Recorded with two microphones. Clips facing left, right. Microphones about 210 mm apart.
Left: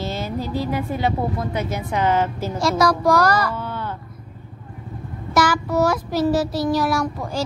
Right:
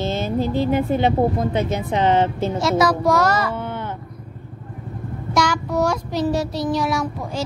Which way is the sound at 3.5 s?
20° right (ahead or behind).